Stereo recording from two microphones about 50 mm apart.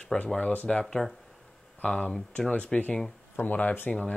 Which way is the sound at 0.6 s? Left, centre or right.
Centre.